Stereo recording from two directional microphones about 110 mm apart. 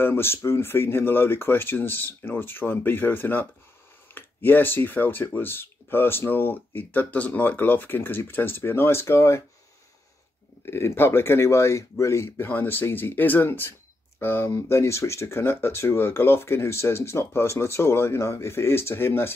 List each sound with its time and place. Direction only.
0.0 s speech: 20° left (ahead or behind)
10.6 s speech: 20° left (ahead or behind)